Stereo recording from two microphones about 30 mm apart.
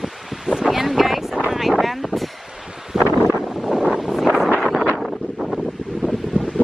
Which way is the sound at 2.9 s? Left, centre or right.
Centre.